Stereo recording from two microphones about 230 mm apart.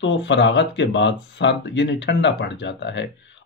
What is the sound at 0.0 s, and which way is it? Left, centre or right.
Speech, left.